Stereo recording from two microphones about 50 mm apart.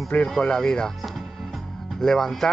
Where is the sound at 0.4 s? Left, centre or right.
Centre.